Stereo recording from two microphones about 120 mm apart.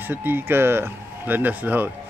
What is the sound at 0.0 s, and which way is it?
Speech, 15° right (ahead or behind).